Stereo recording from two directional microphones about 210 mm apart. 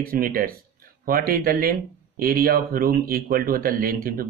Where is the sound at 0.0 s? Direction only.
45° right (ahead or behind).